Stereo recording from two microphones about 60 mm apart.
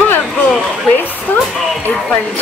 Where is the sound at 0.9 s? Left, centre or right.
Left.